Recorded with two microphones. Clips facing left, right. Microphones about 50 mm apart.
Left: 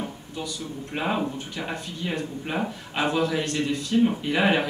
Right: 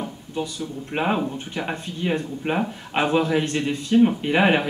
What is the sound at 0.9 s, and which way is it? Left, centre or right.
Speech, right.